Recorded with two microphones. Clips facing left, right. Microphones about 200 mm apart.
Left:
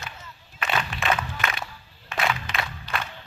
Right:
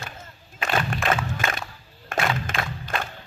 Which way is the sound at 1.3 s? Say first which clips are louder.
Right 2 dB; 45° right (ahead or behind).